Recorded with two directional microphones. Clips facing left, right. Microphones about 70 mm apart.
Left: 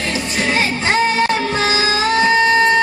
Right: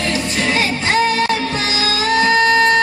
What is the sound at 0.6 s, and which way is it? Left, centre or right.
Music, left.